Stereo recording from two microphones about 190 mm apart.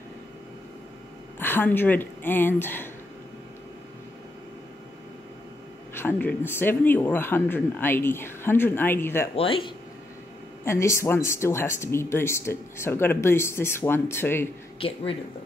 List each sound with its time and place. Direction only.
1.4 s speech: 10° left (ahead or behind)
5.9 s speech: 10° left (ahead or behind)
9.3 s speech: 30° left (ahead or behind)
10.6 s speech: 15° left (ahead or behind)
14.8 s speech: 30° left (ahead or behind)